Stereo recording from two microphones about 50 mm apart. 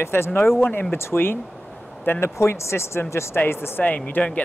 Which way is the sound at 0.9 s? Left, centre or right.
Left.